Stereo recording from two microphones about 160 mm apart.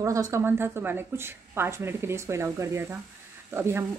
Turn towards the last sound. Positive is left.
turn(degrees=-15)  # may be behind; listen again after turning